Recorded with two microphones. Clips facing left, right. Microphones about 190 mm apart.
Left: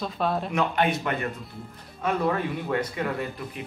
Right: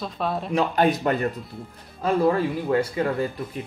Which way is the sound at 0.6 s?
35° right (ahead or behind).